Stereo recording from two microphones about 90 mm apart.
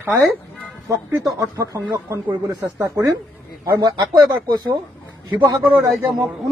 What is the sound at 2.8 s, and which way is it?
Speech, 40° right (ahead or behind).